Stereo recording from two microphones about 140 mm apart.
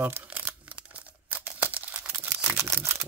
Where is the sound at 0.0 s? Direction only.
15° right (ahead or behind).